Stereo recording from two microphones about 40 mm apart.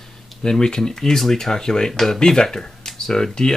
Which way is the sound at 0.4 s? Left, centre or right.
Centre.